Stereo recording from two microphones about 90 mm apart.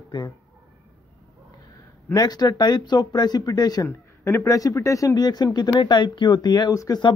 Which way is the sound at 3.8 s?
30° left (ahead or behind).